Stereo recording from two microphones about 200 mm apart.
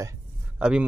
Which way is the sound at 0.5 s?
5° right (ahead or behind).